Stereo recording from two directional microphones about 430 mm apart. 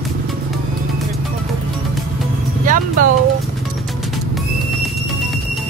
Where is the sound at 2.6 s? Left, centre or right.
Centre.